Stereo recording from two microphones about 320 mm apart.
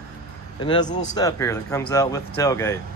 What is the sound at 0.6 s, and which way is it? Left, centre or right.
Speech, centre.